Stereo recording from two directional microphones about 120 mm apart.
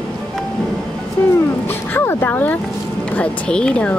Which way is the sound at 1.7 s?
20° left (ahead or behind).